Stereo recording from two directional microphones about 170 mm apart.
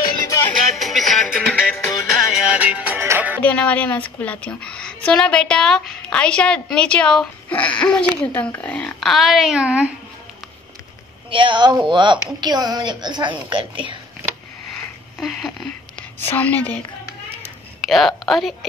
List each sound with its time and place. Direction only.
0.7 s music: centre (ahead or behind)
3.4 s a woman's voice: 10° left (ahead or behind)
11.2 s a woman's voice: 30° right (ahead or behind)
15.1 s a sound: centre (ahead or behind)
17.7 s a woman's voice: centre (ahead or behind)